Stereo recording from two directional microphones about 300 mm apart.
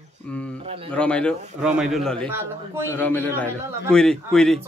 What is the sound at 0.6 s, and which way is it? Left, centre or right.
Speech, centre.